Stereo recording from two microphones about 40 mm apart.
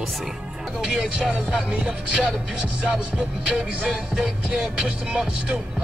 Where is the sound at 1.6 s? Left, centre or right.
Right.